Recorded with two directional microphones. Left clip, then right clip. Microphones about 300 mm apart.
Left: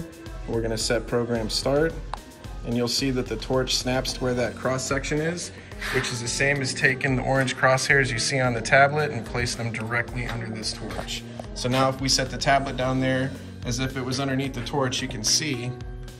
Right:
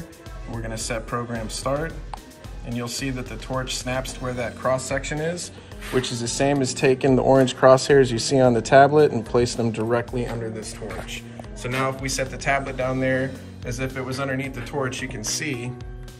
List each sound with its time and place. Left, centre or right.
0.7 s speech: centre
6.4 s speech: right
6.9 s speech: centre
9.9 s speech: right
11.7 s speech: centre